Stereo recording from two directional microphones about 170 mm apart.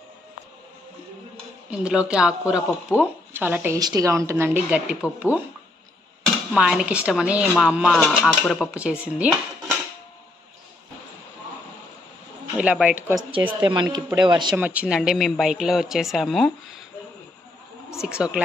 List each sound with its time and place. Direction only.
1.7 s speech: 5° right (ahead or behind)
6.5 s speech: 5° right (ahead or behind)
12.5 s speech: 5° right (ahead or behind)
13.5 s speech: 25° right (ahead or behind)
14.6 s speech: 10° right (ahead or behind)
18.0 s speech: 5° right (ahead or behind)